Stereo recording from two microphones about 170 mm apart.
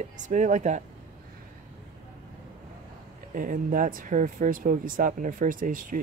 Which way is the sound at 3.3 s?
55° right (ahead or behind).